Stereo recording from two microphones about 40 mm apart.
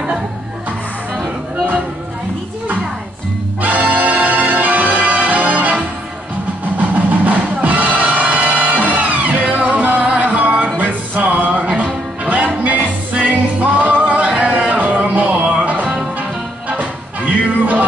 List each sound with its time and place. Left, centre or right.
3.6 s music: right